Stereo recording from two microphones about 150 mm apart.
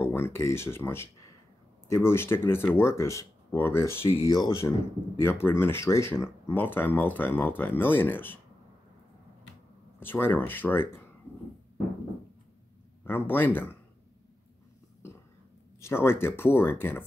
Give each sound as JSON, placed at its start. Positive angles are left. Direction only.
{"t": 0.0, "sound": "speech", "side_deg": 15}
{"t": 9.9, "sound": "speech", "side_deg": 15}
{"t": 13.0, "sound": "speech", "side_deg": 15}
{"t": 15.8, "sound": "speech", "side_deg": 15}